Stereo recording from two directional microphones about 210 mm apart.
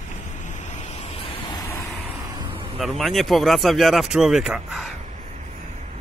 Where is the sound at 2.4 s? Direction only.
25° right (ahead or behind).